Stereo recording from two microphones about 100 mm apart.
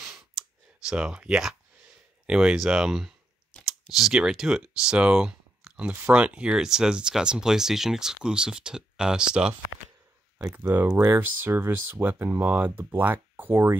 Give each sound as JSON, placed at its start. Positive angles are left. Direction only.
{"t": 0.4, "sound": "clicking", "side_deg": -5}
{"t": 2.2, "sound": "speech", "side_deg": -5}
{"t": 10.6, "sound": "speech", "side_deg": -20}